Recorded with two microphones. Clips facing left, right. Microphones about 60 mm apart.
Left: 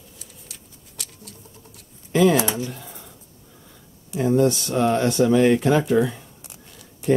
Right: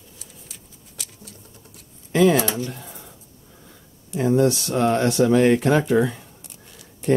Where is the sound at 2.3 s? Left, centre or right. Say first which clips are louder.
Even; centre.